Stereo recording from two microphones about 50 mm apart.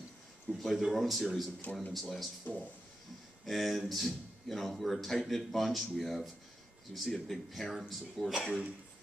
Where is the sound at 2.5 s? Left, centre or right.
Left.